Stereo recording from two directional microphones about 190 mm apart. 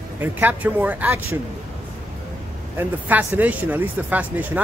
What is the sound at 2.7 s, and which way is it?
Speech, 10° right (ahead or behind).